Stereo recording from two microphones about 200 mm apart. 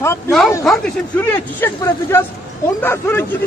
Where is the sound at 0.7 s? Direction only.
Centre (ahead or behind).